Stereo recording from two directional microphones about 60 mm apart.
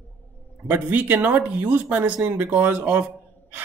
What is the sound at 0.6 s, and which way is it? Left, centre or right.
A woman's voice, right.